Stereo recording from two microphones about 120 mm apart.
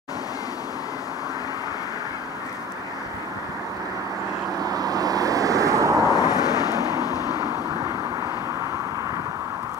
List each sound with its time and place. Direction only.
4.6 s vehicle: 30° right (ahead or behind)
6.1 s vehicle: 30° left (ahead or behind)